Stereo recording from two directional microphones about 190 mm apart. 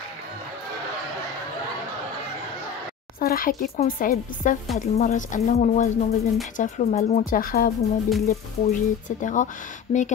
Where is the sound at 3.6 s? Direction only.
45° left (ahead or behind).